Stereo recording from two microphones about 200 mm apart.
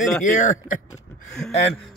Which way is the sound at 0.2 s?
40° left (ahead or behind).